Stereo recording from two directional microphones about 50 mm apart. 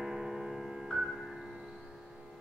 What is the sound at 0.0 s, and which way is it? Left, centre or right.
Music, centre.